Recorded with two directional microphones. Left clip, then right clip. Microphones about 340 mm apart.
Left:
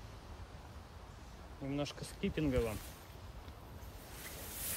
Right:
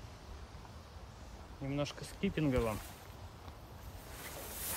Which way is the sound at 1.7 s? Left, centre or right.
Centre.